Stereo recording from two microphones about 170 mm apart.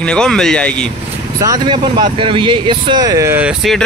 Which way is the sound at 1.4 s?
25° right (ahead or behind).